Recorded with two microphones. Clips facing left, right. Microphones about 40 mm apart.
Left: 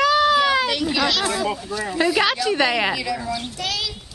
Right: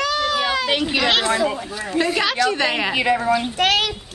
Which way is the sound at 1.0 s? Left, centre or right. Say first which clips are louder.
Right 3 dB; right.